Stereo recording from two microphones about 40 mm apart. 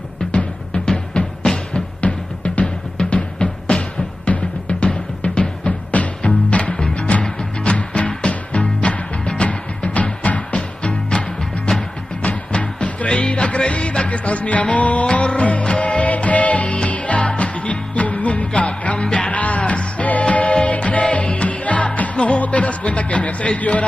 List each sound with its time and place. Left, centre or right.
0.8 s music: centre
2.0 s music: left